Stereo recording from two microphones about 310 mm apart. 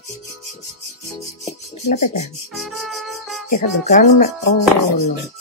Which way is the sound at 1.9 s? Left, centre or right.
Left.